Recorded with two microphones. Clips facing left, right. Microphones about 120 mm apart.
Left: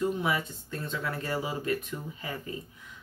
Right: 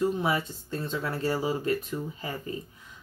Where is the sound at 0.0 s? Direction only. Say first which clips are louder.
Right 2 dB; 30° right (ahead or behind).